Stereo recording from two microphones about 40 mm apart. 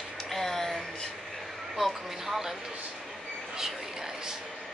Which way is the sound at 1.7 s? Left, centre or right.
Centre.